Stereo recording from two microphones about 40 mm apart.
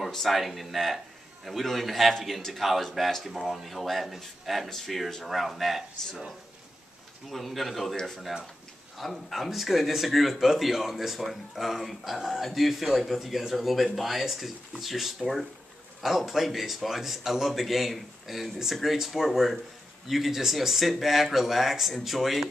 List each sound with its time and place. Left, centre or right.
0.0 s a man's voice: centre
3.6 s speech: centre
7.9 s speech: centre
8.9 s speech: centre